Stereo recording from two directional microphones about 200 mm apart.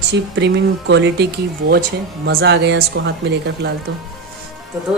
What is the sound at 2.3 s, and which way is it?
Speech, 55° right (ahead or behind).